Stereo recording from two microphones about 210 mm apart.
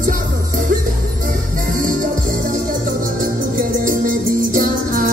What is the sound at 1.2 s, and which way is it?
Music, 40° right (ahead or behind).